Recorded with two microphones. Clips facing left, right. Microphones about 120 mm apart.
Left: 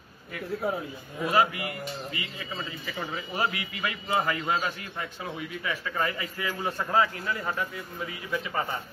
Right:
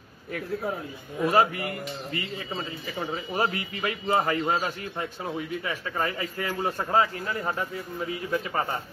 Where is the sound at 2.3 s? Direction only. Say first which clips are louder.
Right 3 dB; 30° right (ahead or behind).